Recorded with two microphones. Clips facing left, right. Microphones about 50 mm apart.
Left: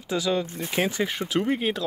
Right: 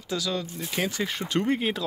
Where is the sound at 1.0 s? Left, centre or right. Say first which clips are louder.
Left 1 dB; centre.